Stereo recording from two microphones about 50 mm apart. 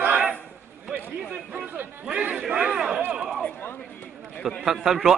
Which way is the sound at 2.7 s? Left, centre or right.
Centre.